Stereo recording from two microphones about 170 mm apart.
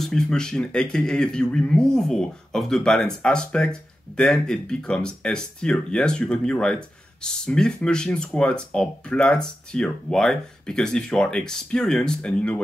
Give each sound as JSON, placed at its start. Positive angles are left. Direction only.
{"t": 0.0, "sound": "speech", "side_deg": 5}